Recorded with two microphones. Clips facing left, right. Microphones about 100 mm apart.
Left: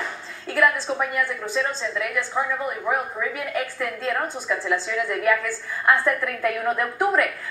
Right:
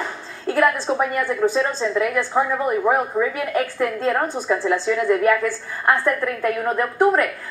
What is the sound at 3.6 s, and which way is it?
A woman's voice, 30° right (ahead or behind).